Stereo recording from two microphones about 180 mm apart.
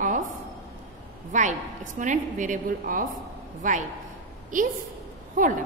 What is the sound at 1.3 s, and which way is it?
A woman's voice, 40° right (ahead or behind).